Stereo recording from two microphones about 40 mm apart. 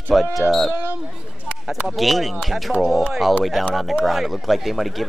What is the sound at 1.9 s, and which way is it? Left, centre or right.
Speech, centre.